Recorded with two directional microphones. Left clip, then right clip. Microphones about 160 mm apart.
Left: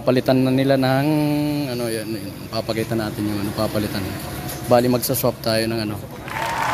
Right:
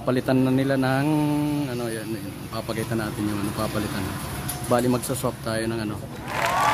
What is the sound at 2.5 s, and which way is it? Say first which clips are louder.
Speech: left 5 dB; 15° left (ahead or behind).